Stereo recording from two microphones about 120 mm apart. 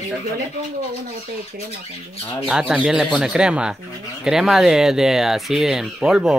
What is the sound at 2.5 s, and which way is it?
Speech, 5° right (ahead or behind).